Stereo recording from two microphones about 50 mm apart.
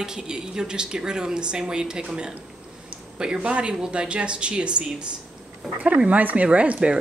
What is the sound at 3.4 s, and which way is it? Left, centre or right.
Speech, right.